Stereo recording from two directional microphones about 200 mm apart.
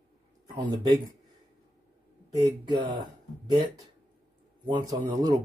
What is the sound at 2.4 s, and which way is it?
Speech, 20° right (ahead or behind).